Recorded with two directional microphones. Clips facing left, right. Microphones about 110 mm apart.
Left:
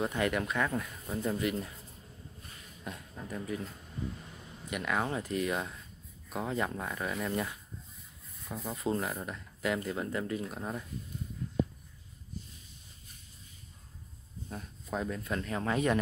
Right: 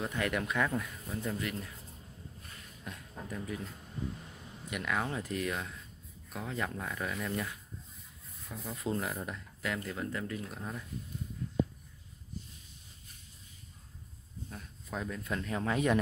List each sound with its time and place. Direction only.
0.0 s speech: 15° left (ahead or behind)
0.3 s speech: centre (ahead or behind)
1.0 s speech: 15° left (ahead or behind)
2.8 s a sound: 10° left (ahead or behind)
4.6 s speech: 5° left (ahead or behind)
8.6 s speech: 15° left (ahead or behind)
9.0 s speech: centre (ahead or behind)
14.5 s speech: 15° left (ahead or behind); by 16.0 s 5° right (ahead or behind)